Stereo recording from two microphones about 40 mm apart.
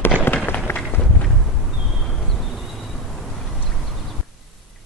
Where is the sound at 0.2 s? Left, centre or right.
Left.